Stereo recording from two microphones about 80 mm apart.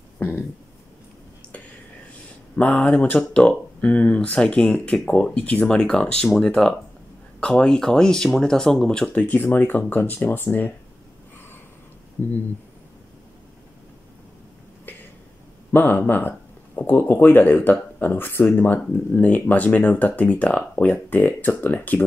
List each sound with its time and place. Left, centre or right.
0.2 s speech: left
2.5 s speech: centre
9.2 s speech: left
14.9 s a sound: left
15.7 s speech: left